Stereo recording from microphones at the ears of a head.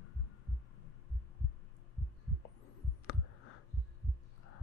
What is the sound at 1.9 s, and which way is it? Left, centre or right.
Heart sounds, left.